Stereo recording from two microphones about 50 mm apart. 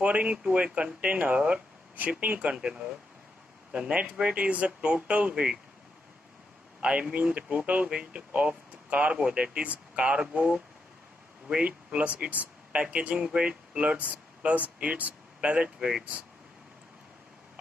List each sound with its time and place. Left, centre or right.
0.0 s speech: right
2.6 s speech: centre
3.9 s speech: right
6.8 s speech: right
14.1 s a sound: right
14.8 s speech: right